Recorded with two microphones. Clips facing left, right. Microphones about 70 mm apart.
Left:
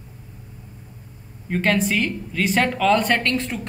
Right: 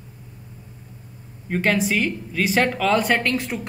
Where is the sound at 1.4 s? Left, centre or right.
Centre.